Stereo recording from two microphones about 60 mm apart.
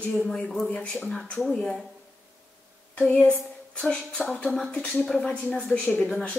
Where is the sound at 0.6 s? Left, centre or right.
Left.